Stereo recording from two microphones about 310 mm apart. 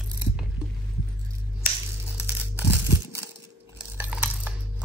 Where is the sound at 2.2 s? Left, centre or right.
Centre.